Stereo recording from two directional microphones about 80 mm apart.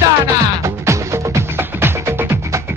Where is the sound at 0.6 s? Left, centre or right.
Right.